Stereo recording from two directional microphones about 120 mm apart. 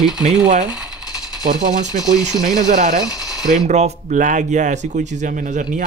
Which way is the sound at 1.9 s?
90° right.